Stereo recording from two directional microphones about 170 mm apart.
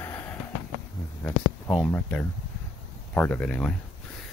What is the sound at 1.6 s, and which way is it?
Speech, 5° left (ahead or behind).